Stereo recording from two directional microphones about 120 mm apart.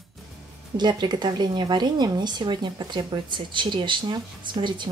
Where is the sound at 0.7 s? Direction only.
40° right (ahead or behind).